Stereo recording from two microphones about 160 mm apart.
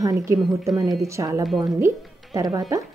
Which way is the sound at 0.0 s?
20° right (ahead or behind).